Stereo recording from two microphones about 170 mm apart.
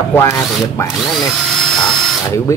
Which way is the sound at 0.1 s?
15° left (ahead or behind).